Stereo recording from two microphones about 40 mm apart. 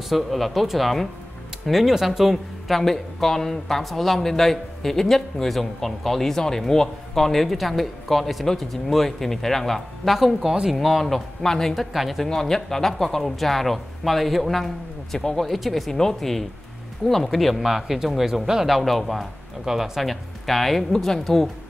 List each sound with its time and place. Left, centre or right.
0.1 s a man's voice: centre
2.7 s speech: centre
10.4 s a man's voice: centre
10.7 s speech: centre
12.3 s speech: centre
15.1 s speech: centre
15.4 s speech: centre
17.6 s a man's voice: centre
19.6 s speech: centre